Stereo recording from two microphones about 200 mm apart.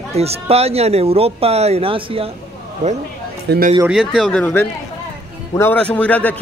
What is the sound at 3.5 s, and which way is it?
Speech, 55° right (ahead or behind).